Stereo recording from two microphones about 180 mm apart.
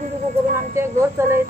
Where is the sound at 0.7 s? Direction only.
15° right (ahead or behind).